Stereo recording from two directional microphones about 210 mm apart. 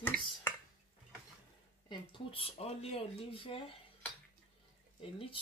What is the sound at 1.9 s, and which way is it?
Speech, 25° left (ahead or behind).